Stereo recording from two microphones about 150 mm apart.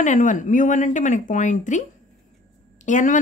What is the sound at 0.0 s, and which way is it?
A woman's voice, 60° left (ahead or behind).